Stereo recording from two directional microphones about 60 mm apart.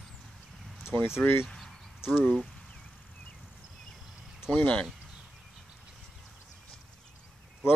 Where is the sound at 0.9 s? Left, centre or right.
Left.